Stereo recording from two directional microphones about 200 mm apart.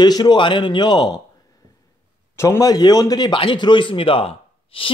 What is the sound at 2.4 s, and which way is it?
A man's voice, 15° left (ahead or behind).